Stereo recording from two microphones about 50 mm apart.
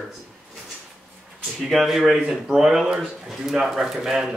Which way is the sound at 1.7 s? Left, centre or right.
Centre.